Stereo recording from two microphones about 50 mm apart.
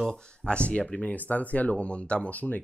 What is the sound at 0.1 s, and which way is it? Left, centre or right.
Speech, centre.